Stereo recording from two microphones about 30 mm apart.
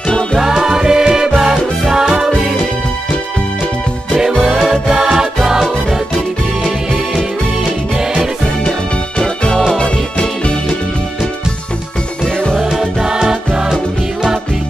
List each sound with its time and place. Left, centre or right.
0.4 s music: centre
4.6 s music: centre
7.6 s music: centre
12.5 s music: centre